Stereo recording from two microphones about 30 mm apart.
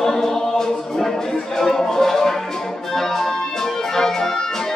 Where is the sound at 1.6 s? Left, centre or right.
Centre.